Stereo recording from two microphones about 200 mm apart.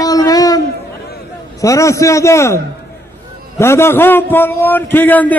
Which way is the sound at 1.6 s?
15° left (ahead or behind).